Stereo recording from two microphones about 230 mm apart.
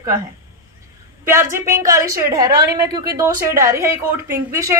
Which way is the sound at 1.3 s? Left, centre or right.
Centre.